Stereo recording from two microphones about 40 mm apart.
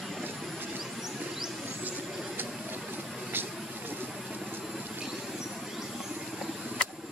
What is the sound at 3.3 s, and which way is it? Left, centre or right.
Vehicle, right.